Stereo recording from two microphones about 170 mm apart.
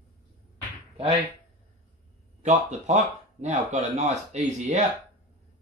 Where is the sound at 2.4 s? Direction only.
45° right (ahead or behind).